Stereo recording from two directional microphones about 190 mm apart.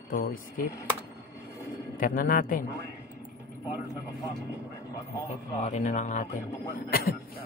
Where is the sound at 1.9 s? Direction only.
50° left (ahead or behind).